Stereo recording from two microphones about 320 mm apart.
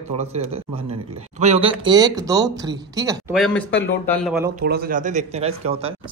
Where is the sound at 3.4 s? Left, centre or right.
Centre.